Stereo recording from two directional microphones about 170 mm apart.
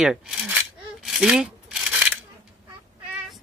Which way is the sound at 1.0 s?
Centre (ahead or behind).